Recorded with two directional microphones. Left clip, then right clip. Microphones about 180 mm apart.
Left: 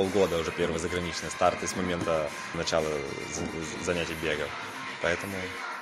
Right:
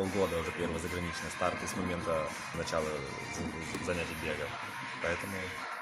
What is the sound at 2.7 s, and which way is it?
Speech, 45° left (ahead or behind).